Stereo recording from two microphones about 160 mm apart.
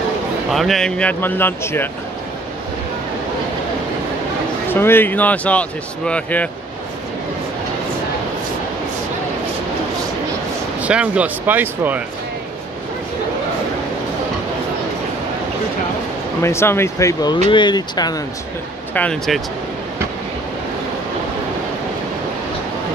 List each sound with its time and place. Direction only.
0.5 s speech: centre (ahead or behind)
4.6 s speech: 15° left (ahead or behind)
10.8 s speech: 10° right (ahead or behind)
16.4 s speech: 15° left (ahead or behind)
18.9 s speech: 5° left (ahead or behind)